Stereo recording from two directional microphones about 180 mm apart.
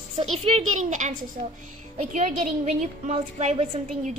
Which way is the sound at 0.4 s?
35° right (ahead or behind).